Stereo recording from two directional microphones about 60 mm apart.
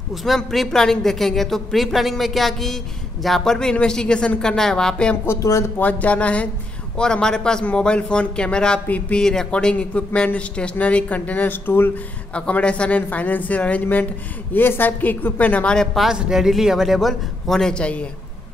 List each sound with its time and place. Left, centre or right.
0.1 s a woman's voice: centre
5.4 s speech: left
5.8 s a man's voice: left
12.4 s a man's voice: centre
15.7 s speech: centre
16.0 s a woman's voice: centre